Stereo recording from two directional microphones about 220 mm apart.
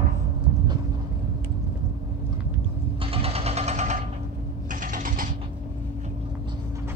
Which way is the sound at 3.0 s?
25° right (ahead or behind).